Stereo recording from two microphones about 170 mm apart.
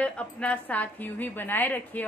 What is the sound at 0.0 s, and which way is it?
A woman's voice, 5° left (ahead or behind).